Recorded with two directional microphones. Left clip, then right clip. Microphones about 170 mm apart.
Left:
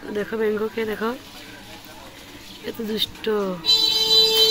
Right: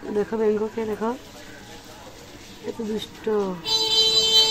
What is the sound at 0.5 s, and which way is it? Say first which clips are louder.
Speech: left 1 dB; 5° right (ahead or behind).